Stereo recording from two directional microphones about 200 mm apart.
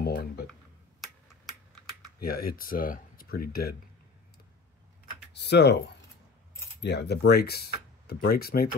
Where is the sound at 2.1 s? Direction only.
50° left (ahead or behind).